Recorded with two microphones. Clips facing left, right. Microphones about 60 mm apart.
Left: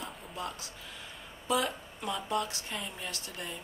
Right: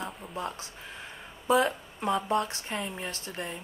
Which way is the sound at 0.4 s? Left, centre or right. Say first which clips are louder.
Right 3 dB; right.